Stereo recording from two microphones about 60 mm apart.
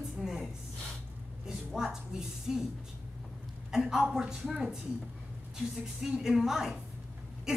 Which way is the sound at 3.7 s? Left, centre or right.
Centre.